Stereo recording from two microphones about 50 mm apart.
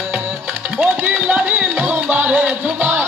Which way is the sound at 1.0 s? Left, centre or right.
Right.